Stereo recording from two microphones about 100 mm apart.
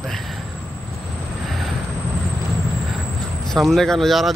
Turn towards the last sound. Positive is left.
turn(degrees=0)  # may be behind; listen again after turning